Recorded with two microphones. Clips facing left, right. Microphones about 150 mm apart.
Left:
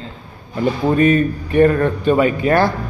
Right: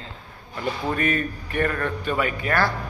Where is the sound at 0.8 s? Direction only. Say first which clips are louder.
Left 11 dB; 25° left (ahead or behind).